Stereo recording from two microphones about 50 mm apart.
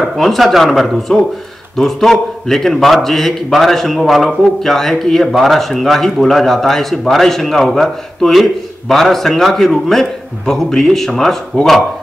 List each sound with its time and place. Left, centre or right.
0.0 s a man's voice: centre